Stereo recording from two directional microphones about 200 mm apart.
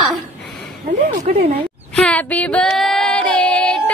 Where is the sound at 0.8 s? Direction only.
35° right (ahead or behind).